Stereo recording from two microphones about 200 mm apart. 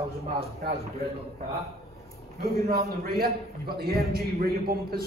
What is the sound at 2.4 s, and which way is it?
A man's voice, 50° right (ahead or behind).